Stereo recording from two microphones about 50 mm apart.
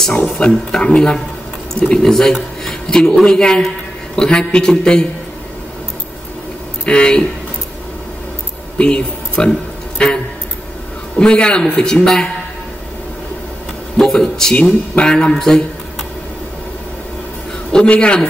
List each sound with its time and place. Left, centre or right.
0.1 s speech: left
0.7 s a man's voice: centre
2.6 s a sound: centre
3.3 s a man's voice: centre
6.9 s a man's voice: centre
8.7 s a man's voice: centre
9.9 s a sound: centre
11.1 s a man's voice: centre
13.9 s a man's voice: centre
15.3 s speech: centre
17.8 s speech: left